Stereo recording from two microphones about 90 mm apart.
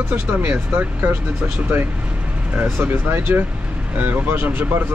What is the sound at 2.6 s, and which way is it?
Speech, 20° right (ahead or behind).